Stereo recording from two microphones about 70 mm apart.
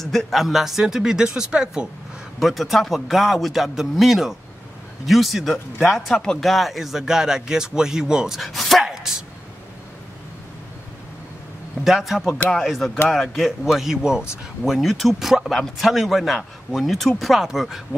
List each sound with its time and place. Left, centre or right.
0.0 s speech: centre
2.4 s speech: centre
8.4 s speech: centre
8.8 s a sound: centre
11.8 s speech: centre